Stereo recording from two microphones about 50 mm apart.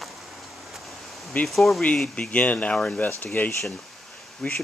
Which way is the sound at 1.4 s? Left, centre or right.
Centre.